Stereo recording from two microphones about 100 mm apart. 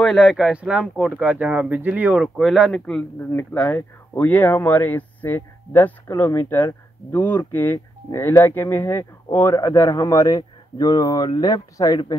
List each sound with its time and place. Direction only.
0.0 s speech: centre (ahead or behind)
2.2 s speech: centre (ahead or behind)
3.7 s speech: 25° left (ahead or behind)